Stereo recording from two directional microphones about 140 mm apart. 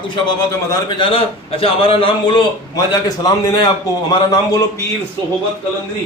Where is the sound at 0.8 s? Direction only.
35° left (ahead or behind).